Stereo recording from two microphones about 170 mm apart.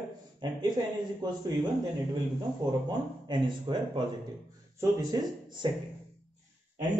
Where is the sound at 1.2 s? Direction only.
25° right (ahead or behind).